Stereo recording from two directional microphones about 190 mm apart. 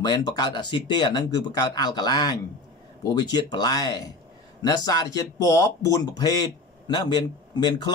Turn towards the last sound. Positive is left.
turn(degrees=25)  # may be behind; listen again after turning